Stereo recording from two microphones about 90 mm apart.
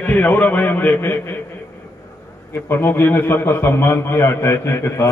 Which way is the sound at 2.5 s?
25° left (ahead or behind).